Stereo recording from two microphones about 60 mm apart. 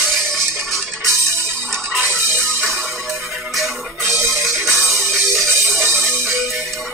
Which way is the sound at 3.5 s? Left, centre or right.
Centre.